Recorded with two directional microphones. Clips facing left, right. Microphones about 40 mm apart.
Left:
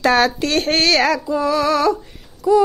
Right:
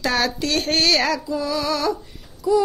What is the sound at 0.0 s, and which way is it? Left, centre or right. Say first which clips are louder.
Child singing: left 6 dB; left.